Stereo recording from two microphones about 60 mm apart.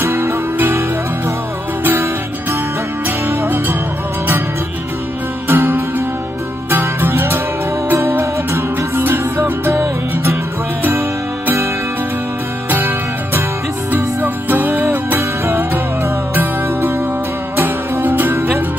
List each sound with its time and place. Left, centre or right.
0.0 s music: right
3.3 s music: right
5.5 s music: right
12.6 s music: right
17.6 s music: right